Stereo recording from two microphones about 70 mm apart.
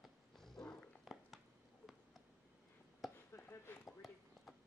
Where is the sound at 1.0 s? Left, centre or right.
Centre.